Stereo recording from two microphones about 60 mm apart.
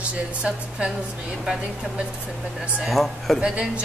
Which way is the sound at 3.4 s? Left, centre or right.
Centre.